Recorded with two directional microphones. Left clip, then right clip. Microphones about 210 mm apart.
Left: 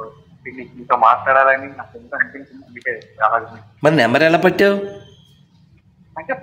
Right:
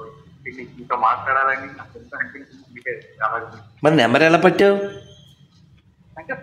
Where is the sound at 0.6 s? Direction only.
25° left (ahead or behind).